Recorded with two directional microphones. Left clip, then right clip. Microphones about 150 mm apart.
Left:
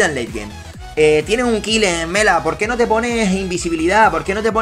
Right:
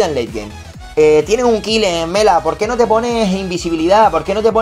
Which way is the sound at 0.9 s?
25° right (ahead or behind).